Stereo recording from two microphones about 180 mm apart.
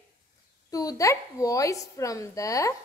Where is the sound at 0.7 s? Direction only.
20° left (ahead or behind).